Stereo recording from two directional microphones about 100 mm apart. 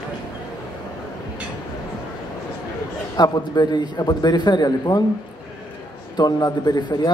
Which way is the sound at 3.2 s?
45° left (ahead or behind).